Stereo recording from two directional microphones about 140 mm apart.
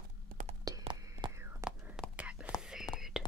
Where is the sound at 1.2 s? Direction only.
35° right (ahead or behind).